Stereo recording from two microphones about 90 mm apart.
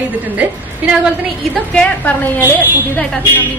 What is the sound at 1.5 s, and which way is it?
A woman's voice, 15° left (ahead or behind).